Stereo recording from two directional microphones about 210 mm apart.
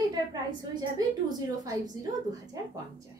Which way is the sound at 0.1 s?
20° right (ahead or behind).